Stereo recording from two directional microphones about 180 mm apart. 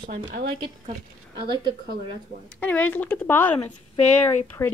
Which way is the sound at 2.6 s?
10° left (ahead or behind).